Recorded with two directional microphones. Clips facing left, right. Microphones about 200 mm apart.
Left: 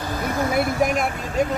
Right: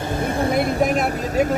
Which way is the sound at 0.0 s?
25° right (ahead or behind).